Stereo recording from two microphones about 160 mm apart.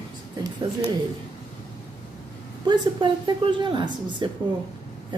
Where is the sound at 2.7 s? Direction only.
30° right (ahead or behind).